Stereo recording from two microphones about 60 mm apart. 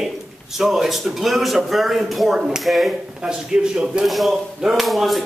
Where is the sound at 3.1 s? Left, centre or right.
Centre.